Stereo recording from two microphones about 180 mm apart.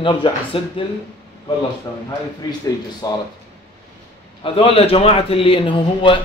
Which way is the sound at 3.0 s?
20° left (ahead or behind).